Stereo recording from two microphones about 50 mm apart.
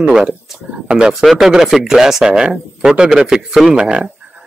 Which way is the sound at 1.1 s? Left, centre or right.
Centre.